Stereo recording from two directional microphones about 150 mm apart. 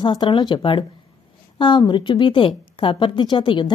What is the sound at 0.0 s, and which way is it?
Speech, 30° left (ahead or behind).